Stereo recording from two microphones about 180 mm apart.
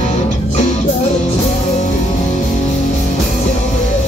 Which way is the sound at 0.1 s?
35° left (ahead or behind).